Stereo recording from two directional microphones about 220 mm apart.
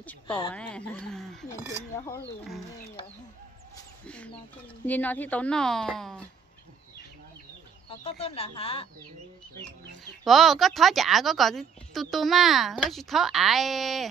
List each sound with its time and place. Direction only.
0.0 s a sound: 5° left (ahead or behind)
0.5 s a woman's voice: 5° left (ahead or behind)
4.8 s a woman's voice: 5° left (ahead or behind)
7.9 s speech: 25° left (ahead or behind)
10.2 s a woman's voice: centre (ahead or behind)